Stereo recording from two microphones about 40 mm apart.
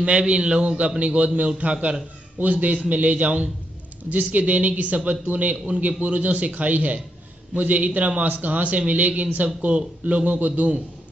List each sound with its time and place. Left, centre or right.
0.0 s a man's voice: right